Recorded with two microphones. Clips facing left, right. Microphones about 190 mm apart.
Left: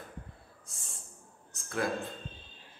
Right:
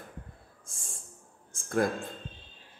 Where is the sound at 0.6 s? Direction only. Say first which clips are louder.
Right 2 dB; 45° right (ahead or behind).